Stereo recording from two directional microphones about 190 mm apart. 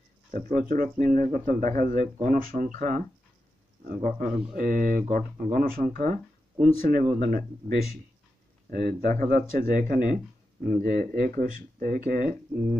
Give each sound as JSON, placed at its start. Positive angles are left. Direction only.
{"t": 0.3, "sound": "speech", "side_deg": -45}
{"t": 4.0, "sound": "speech", "side_deg": -45}